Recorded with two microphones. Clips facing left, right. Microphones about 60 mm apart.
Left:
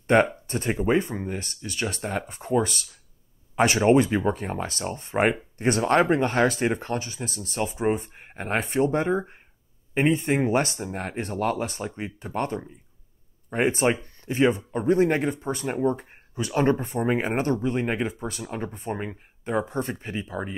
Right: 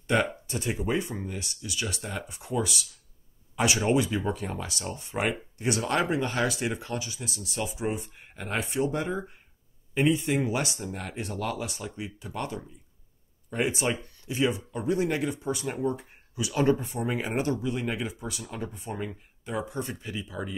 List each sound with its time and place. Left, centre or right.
0.0 s speech: left